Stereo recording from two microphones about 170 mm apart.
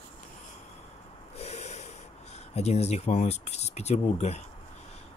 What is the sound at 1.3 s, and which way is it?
Snort, 40° left (ahead or behind).